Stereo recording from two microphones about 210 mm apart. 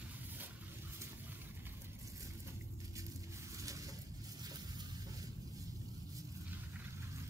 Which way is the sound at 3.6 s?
15° right (ahead or behind).